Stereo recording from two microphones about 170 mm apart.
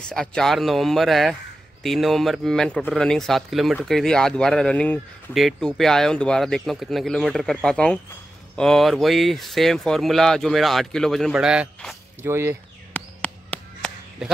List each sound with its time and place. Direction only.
0.1 s speech: 5° left (ahead or behind)
12.2 s speech: 15° right (ahead or behind)
12.9 s chop: 5° left (ahead or behind)